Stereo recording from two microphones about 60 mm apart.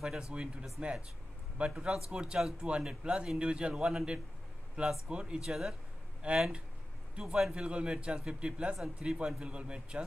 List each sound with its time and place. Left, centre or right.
0.0 s a man's voice: centre
0.3 s a man's voice: centre
6.2 s a man's voice: centre